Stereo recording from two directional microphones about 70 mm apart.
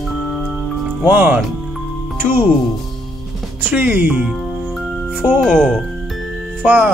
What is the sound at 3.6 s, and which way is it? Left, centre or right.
Speech, right.